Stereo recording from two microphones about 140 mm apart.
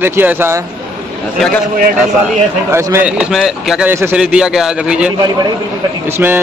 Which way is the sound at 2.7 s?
20° right (ahead or behind).